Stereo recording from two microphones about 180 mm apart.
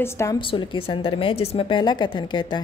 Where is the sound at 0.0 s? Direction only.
15° left (ahead or behind).